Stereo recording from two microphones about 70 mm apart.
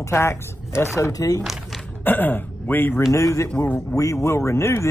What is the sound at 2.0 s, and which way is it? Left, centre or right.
Speech, left.